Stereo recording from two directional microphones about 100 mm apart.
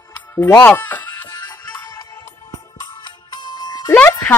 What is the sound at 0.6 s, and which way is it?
Speech, 20° left (ahead or behind).